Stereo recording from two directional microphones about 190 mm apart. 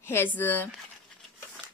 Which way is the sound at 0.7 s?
Centre (ahead or behind).